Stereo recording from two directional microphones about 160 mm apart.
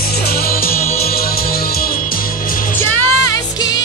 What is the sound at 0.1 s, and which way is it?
Music, 70° left (ahead or behind).